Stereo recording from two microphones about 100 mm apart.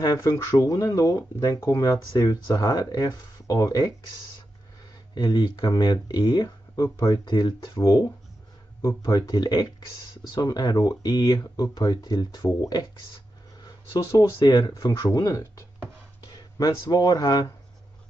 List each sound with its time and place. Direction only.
0.0 s speech: 35° left (ahead or behind)
5.1 s speech: 45° left (ahead or behind)
6.8 s speech: 35° left (ahead or behind)
7.3 s speech: 50° left (ahead or behind)
7.8 s speech: 35° left (ahead or behind)
13.9 s speech: 35° left (ahead or behind)